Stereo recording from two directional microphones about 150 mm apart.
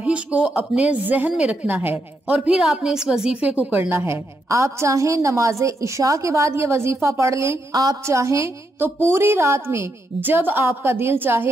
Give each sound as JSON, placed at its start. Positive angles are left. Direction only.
{"t": 0.0, "sound": "a woman's voice", "side_deg": -5}